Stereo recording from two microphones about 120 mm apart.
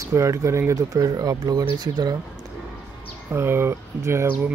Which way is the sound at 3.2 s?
20° right (ahead or behind).